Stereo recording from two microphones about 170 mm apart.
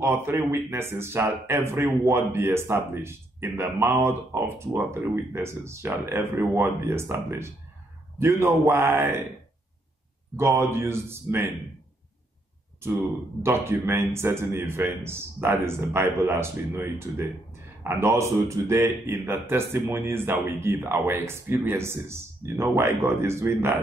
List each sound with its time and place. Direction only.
0.0 s speech: 15° right (ahead or behind)
10.3 s speech: 15° right (ahead or behind)
13.4 s speech: 15° right (ahead or behind)